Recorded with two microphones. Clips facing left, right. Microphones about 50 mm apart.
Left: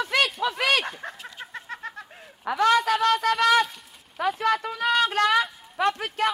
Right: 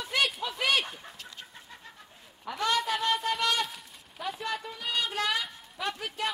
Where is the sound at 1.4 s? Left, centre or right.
Left.